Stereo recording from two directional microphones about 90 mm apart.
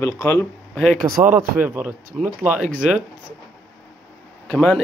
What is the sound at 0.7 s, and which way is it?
Speech, 5° left (ahead or behind).